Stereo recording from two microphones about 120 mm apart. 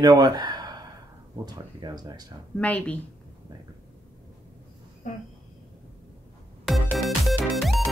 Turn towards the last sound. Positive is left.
turn(degrees=0)  # may be behind; listen again after turning